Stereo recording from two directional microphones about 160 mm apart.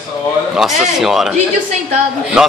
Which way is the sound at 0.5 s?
5° right (ahead or behind).